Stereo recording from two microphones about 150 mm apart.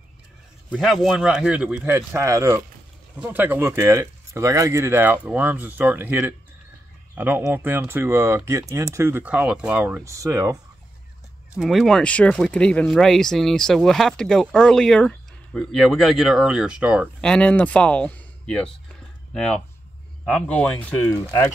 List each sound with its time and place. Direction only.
0.7 s speech: centre (ahead or behind)
10.0 s speech: 20° right (ahead or behind)
11.5 s speech: centre (ahead or behind)
17.2 s speech: 5° left (ahead or behind)